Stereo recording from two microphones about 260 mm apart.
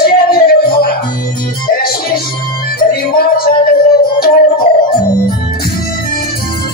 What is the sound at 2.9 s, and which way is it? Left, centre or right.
Music, left.